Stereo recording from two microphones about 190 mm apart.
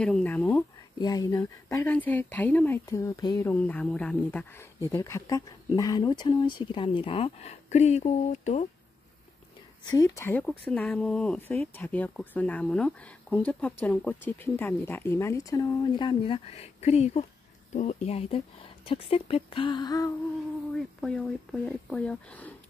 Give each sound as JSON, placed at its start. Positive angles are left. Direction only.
{"t": 0.0, "sound": "speech", "side_deg": 5}
{"t": 0.9, "sound": "speech", "side_deg": 20}
{"t": 9.8, "sound": "speech", "side_deg": 20}
{"t": 20.7, "sound": "speech", "side_deg": 5}